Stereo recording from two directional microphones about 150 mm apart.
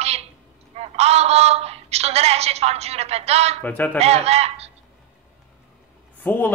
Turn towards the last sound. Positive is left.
turn(degrees=10)  # may be behind; listen again after turning